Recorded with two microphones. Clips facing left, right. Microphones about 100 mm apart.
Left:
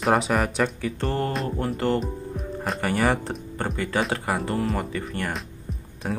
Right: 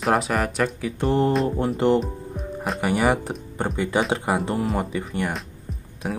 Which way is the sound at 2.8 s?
10° right (ahead or behind).